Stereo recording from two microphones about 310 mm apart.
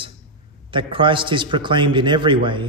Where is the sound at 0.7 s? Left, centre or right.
Centre.